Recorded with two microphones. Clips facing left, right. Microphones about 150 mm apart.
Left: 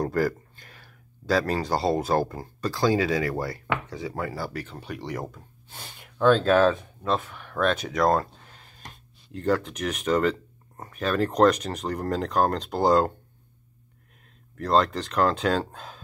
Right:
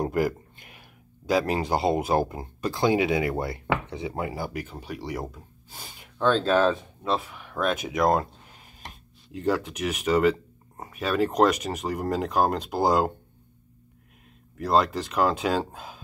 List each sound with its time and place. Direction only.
0.0 s speech: 20° right (ahead or behind); by 6.7 s 5° left (ahead or behind)
7.0 s speech: 5° right (ahead or behind)
14.6 s speech: 5° right (ahead or behind)